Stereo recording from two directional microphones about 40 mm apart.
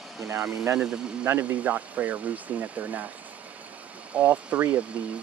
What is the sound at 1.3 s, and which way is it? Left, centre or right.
Speech, right.